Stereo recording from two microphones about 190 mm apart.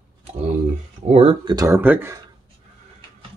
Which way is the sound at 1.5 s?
15° right (ahead or behind).